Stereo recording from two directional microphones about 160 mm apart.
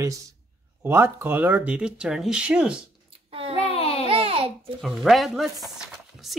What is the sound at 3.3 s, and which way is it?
Speech, 35° right (ahead or behind).